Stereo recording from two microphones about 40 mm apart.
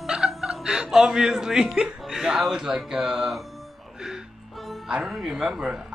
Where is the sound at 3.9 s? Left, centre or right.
Centre.